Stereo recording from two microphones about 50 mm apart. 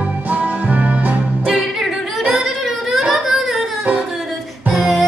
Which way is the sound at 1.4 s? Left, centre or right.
Centre.